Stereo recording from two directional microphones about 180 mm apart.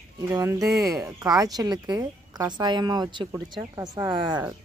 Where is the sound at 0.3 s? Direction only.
20° right (ahead or behind).